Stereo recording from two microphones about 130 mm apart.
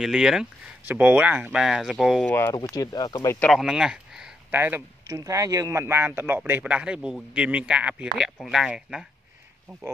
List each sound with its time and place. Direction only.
0.0 s speech: 5° right (ahead or behind)
2.2 s speech: 15° left (ahead or behind)
2.7 s speech: 25° left (ahead or behind)
3.3 s speech: 15° left (ahead or behind)
3.5 s speech: 5° right (ahead or behind)
4.5 s speech: 15° right (ahead or behind)